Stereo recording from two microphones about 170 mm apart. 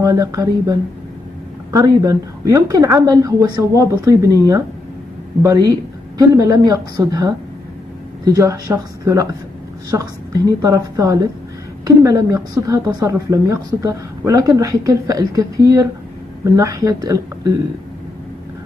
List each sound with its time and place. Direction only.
0.0 s a woman's voice: 20° right (ahead or behind)
10.6 s a woman's voice: 20° right (ahead or behind)